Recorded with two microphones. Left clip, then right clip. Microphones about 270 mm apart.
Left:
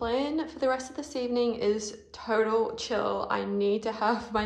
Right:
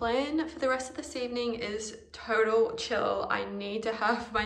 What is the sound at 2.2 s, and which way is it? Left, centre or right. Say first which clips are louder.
Speech: even; centre.